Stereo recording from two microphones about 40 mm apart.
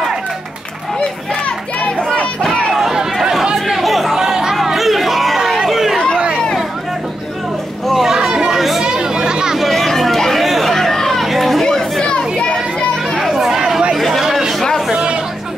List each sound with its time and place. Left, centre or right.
0.9 s a sound: left
2.0 s a sound: centre
3.2 s chatter: centre
4.2 s chatter: centre
4.7 s crowd: centre
7.8 s a sound: centre
8.3 s chatter: centre
8.5 s chatter: centre
8.8 s chatter: centre
9.6 s chatter: centre
11.6 s chatter: centre
13.2 s chatter: centre
13.9 s a sound: centre